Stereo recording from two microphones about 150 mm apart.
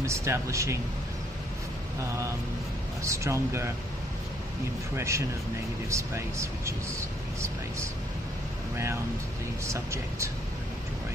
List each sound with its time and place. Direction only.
0.0 s speech: 20° right (ahead or behind)
3.0 s speech: 20° right (ahead or behind)
4.9 s speech: 20° right (ahead or behind)
9.7 s speech: 20° right (ahead or behind)